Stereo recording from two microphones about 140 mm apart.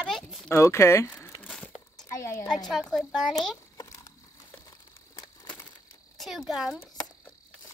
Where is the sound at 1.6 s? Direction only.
5° left (ahead or behind).